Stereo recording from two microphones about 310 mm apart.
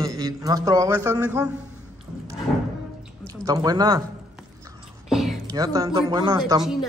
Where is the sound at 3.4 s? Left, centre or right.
Centre.